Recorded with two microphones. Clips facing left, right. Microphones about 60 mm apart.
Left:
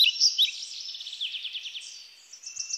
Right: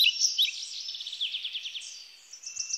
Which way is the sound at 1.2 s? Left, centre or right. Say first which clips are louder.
Right 1 dB; centre.